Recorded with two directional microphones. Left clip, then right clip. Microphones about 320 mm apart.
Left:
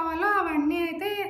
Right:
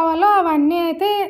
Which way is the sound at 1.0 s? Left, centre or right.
Right.